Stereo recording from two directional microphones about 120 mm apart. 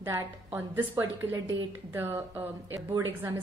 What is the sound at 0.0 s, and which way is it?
A woman's voice, 20° right (ahead or behind).